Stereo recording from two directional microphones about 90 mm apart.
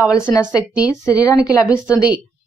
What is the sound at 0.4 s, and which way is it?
A woman's voice, 10° right (ahead or behind).